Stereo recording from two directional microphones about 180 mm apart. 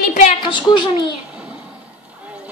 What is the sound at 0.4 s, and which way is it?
Speech, 25° left (ahead or behind).